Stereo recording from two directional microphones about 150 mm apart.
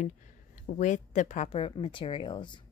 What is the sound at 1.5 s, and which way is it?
Speech, 35° left (ahead or behind).